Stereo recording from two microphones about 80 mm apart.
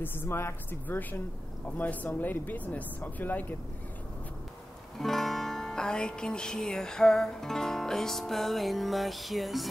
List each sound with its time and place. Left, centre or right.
0.0 s speech: left
4.9 s music: centre